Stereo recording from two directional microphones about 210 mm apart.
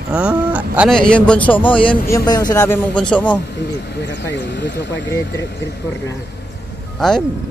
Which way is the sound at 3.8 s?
50° left (ahead or behind).